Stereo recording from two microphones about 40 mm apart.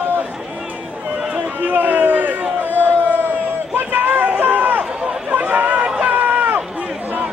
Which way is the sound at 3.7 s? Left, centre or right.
Right.